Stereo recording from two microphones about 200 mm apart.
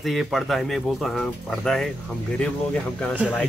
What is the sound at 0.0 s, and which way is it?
Speech, centre (ahead or behind).